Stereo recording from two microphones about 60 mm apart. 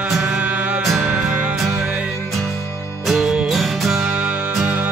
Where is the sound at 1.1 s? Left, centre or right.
Centre.